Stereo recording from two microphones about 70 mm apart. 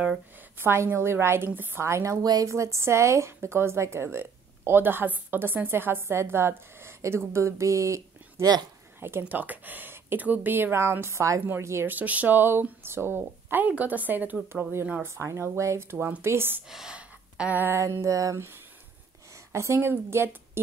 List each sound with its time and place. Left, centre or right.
0.6 s speech: right
1.8 s speech: right
9.2 s speech: right
11.9 s speech: right
14.5 s speech: right
16.6 s gasp: centre
18.0 s a woman's voice: right